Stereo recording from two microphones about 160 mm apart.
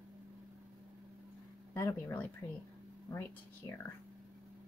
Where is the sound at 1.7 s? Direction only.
15° left (ahead or behind).